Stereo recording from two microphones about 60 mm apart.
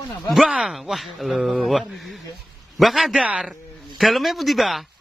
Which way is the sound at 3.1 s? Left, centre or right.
Centre.